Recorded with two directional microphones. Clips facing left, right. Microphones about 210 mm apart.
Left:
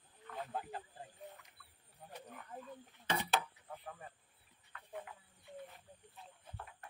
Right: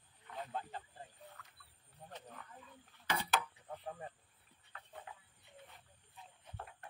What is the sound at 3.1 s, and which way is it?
Mechanisms, 25° left (ahead or behind).